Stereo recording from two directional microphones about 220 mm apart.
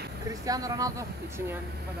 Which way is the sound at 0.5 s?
15° right (ahead or behind).